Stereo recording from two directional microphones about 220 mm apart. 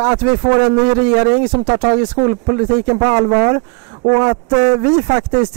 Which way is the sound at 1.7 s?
25° right (ahead or behind).